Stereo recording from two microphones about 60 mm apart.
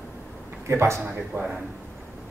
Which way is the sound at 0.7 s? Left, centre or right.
Right.